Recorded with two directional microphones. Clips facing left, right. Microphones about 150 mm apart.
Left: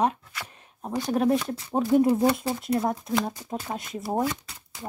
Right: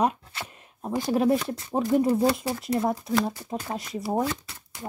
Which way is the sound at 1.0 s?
5° right (ahead or behind).